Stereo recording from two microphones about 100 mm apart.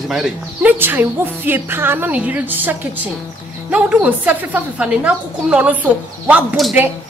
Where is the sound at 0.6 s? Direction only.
20° right (ahead or behind).